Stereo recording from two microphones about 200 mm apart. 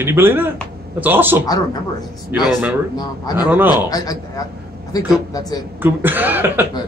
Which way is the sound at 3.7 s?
20° left (ahead or behind).